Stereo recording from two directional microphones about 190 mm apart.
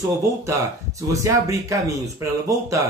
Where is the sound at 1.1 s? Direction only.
15° right (ahead or behind).